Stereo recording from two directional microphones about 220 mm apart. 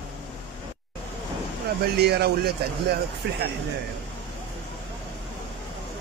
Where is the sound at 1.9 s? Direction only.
45° right (ahead or behind).